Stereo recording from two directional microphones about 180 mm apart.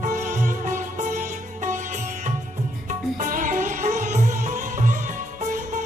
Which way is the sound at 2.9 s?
45° right (ahead or behind).